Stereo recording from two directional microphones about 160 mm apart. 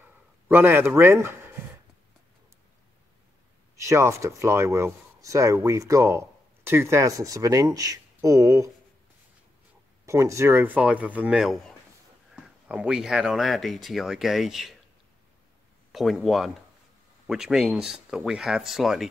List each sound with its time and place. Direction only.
0.0 s a sound: 10° right (ahead or behind)
3.7 s speech: 20° right (ahead or behind)
10.0 s speech: 20° right (ahead or behind); by 14.7 s centre (ahead or behind)
15.9 s speech: centre (ahead or behind)